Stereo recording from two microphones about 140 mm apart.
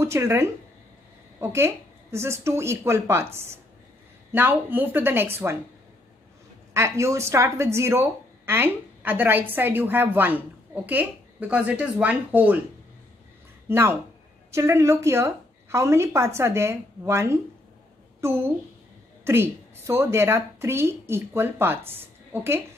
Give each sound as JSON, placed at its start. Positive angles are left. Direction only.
{"t": 0.0, "sound": "a woman's voice", "side_deg": -20}
{"t": 4.3, "sound": "speech", "side_deg": -15}
{"t": 6.7, "sound": "speech", "side_deg": -20}
{"t": 13.7, "sound": "a woman's voice", "side_deg": -20}